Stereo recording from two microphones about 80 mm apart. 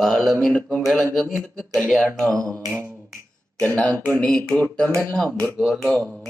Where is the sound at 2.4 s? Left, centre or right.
Right.